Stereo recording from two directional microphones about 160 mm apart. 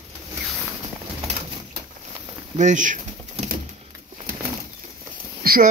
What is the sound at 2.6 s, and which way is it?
Speech, 50° right (ahead or behind).